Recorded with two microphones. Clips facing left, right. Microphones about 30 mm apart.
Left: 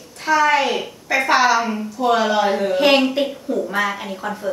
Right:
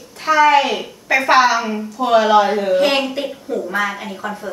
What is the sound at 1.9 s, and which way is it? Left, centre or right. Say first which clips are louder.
Speech: right 5 dB; centre.